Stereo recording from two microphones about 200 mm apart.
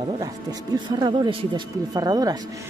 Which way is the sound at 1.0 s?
20° right (ahead or behind).